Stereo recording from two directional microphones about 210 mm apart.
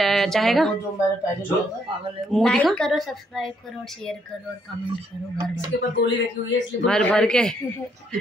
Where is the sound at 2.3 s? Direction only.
Centre (ahead or behind).